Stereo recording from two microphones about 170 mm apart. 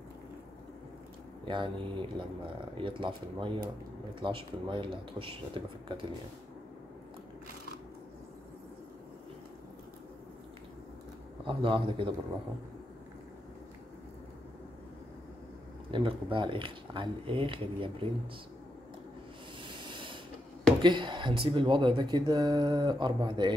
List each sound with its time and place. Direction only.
1.5 s speech: 30° right (ahead or behind)
11.4 s speech: 30° right (ahead or behind)
15.9 s speech: 30° right (ahead or behind)
19.6 s a sound: 30° right (ahead or behind)
20.8 s speech: 30° right (ahead or behind)